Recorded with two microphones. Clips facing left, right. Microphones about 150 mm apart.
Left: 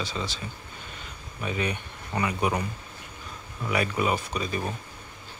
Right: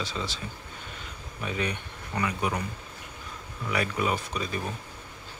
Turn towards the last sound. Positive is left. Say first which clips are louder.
# left 2 dB
turn(degrees=0)  # may be behind; listen again after turning